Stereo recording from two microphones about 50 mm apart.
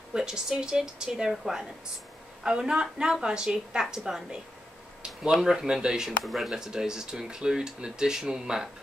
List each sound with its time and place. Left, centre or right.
0.1 s speech: centre
6.2 s speech: centre
6.5 s speech: centre